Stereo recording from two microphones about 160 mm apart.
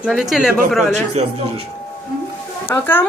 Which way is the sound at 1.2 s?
45° right (ahead or behind).